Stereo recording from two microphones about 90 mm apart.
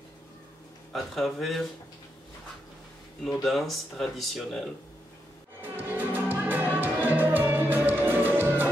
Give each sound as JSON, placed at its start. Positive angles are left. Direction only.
{"t": 0.9, "sound": "speech", "side_deg": 0}
{"t": 3.3, "sound": "speech", "side_deg": 0}
{"t": 5.9, "sound": "music", "side_deg": -20}